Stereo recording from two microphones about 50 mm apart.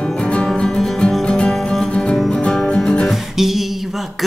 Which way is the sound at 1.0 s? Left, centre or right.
Left.